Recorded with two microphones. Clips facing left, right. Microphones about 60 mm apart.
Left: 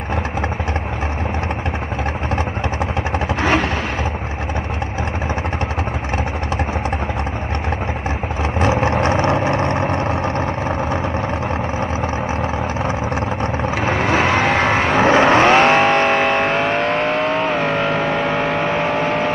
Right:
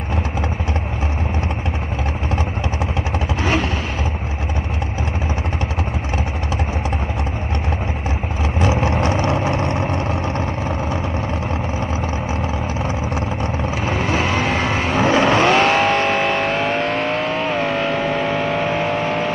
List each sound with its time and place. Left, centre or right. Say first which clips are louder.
8.5 s vehicle: left 2 dB; left
12.8 s vehicle: left 2 dB; left; by 18.7 s centre